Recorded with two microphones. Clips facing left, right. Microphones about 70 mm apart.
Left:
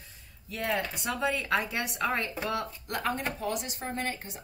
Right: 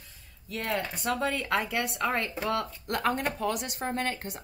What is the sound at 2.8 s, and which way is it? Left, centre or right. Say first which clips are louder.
Speech: right 5 dB; right.